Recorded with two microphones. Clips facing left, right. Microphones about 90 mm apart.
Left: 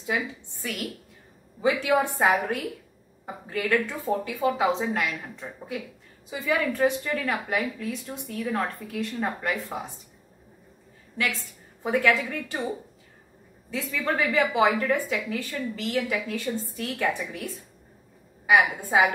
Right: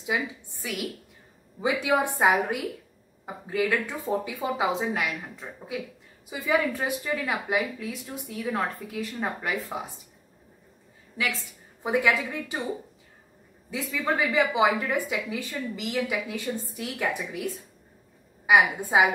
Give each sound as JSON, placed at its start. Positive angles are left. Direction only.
{"t": 0.0, "sound": "a woman's voice", "side_deg": -10}
{"t": 1.6, "sound": "a woman's voice", "side_deg": -15}
{"t": 11.8, "sound": "a woman's voice", "side_deg": -15}
{"t": 13.7, "sound": "a woman's voice", "side_deg": -15}
{"t": 18.5, "sound": "a woman's voice", "side_deg": -15}